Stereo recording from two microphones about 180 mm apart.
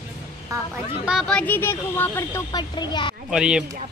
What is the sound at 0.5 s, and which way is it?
Speech, 20° right (ahead or behind).